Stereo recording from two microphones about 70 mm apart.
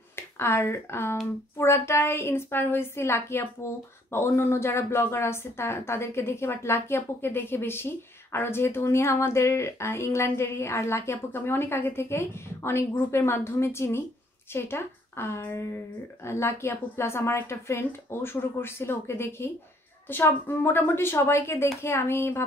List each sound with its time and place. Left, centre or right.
0.1 s a woman's voice: left